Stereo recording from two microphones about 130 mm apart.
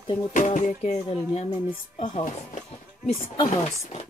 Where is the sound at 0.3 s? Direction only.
75° left (ahead or behind).